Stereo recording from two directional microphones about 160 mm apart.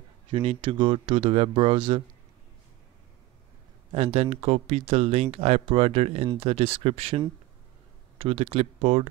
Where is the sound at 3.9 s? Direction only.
40° right (ahead or behind).